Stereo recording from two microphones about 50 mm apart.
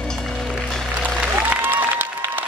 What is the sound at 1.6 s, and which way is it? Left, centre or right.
Applause, right.